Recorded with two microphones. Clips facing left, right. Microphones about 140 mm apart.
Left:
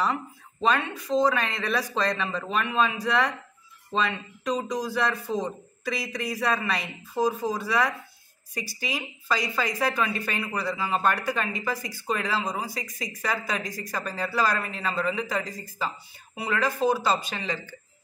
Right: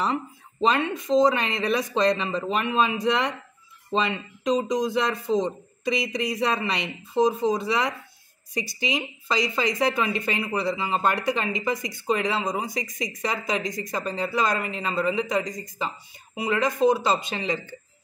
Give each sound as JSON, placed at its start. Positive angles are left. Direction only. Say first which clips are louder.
{"t": 0.0, "sound": "speech", "louder": "right 1 dB", "side_deg": -20}